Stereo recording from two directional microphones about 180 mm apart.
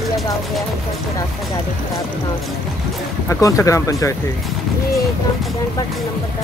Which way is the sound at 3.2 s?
15° left (ahead or behind).